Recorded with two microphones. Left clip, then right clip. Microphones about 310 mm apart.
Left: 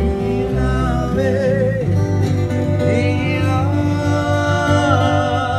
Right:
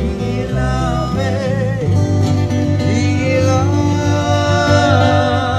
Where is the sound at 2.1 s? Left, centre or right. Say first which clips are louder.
Right 2 dB; right.